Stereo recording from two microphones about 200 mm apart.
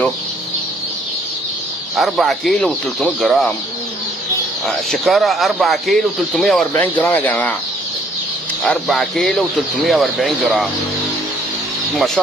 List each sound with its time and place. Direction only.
2.0 s speech: centre (ahead or behind)
4.6 s speech: centre (ahead or behind)
8.6 s speech: centre (ahead or behind)